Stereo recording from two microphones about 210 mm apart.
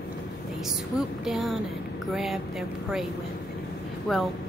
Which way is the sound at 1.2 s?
Centre (ahead or behind).